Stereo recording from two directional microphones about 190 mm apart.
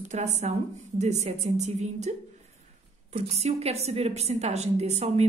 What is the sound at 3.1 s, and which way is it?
Speech, 35° right (ahead or behind).